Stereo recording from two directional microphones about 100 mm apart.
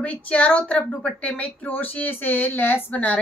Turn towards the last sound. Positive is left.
turn(degrees=15)  # may be behind; listen again after turning